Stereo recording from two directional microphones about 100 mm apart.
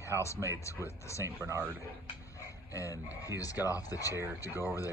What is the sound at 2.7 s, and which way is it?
Speech, 35° left (ahead or behind).